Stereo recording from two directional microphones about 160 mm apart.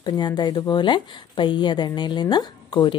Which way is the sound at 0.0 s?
25° left (ahead or behind).